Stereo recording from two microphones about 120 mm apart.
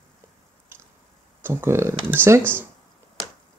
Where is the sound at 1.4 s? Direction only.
20° right (ahead or behind).